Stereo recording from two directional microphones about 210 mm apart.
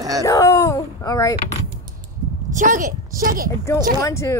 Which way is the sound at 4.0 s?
15° left (ahead or behind).